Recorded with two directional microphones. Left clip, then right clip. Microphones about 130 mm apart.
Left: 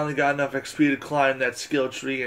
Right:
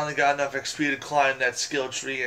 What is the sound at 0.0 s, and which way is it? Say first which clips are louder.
Speech: even; 60° left (ahead or behind).